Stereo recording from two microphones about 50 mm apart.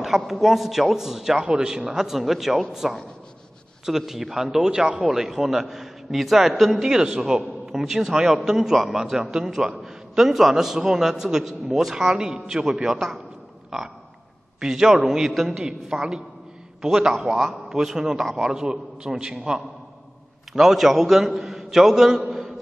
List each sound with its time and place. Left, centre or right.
0.0 s a man's voice: centre
4.6 s speech: right
5.0 s a man's voice: centre